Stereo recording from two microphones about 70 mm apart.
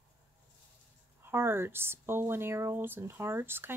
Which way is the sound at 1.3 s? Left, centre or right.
Right.